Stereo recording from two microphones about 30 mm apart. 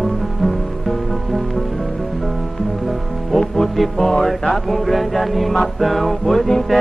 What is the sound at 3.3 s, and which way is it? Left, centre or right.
Music, centre.